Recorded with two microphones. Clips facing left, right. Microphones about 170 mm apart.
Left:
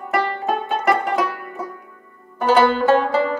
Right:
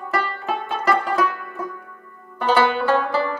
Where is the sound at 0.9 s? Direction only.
25° left (ahead or behind).